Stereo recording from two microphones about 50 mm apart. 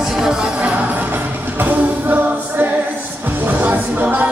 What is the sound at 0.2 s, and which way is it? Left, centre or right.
Music, centre.